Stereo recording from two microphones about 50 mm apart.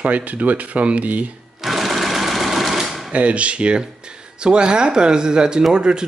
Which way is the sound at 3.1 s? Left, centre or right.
Right.